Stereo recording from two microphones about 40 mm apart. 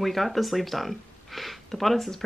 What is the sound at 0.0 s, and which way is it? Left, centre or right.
Speech, centre.